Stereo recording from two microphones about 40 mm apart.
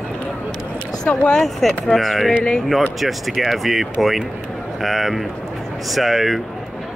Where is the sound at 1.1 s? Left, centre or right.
Left.